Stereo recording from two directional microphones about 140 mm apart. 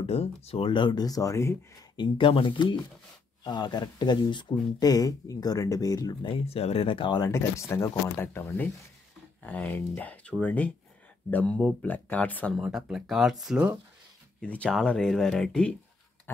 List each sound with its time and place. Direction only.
0.0 s speech: 45° left (ahead or behind); by 1.9 s 20° left (ahead or behind)
2.0 s speech: 35° left (ahead or behind)
6.2 s speech: 40° left (ahead or behind)
7.2 s speech: 20° left (ahead or behind)
12.5 s speech: 5° right (ahead or behind)
14.4 s speech: 10° left (ahead or behind)